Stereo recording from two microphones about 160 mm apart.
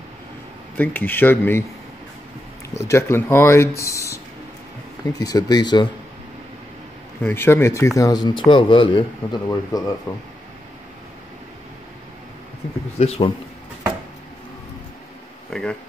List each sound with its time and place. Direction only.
0.7 s speech: 10° left (ahead or behind)
2.9 s speech: 15° left (ahead or behind)
5.2 s speech: 25° left (ahead or behind)
7.2 s speech: 15° left (ahead or behind)
13.0 s speech: 40° left (ahead or behind)
15.5 s a sound: 5° left (ahead or behind)